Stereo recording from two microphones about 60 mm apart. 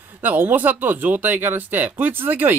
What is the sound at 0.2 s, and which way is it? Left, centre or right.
Speech, right.